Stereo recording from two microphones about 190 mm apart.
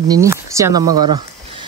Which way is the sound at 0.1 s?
15° right (ahead or behind).